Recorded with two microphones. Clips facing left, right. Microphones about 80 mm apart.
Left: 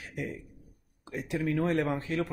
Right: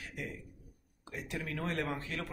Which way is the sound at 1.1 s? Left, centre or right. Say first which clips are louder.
Left 10 dB; centre.